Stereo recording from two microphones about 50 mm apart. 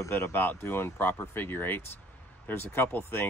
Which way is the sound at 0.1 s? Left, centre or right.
Left.